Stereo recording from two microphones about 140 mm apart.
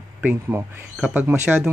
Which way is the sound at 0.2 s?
10° right (ahead or behind).